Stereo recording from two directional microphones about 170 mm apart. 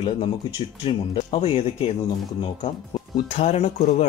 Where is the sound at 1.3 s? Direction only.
35° left (ahead or behind).